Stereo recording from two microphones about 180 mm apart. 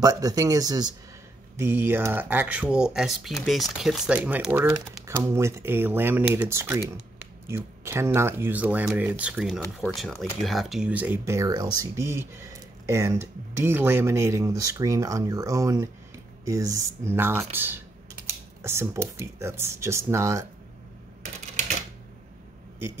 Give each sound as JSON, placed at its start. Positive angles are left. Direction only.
{"t": 0.0, "sound": "speech", "side_deg": -20}